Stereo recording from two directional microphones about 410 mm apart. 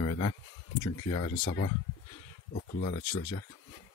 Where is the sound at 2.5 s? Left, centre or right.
Centre.